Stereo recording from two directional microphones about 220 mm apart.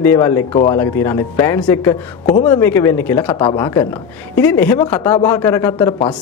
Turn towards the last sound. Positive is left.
turn(degrees=10)  # may be behind; listen again after turning